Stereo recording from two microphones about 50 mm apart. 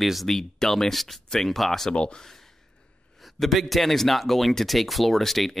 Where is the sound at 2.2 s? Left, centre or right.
Centre.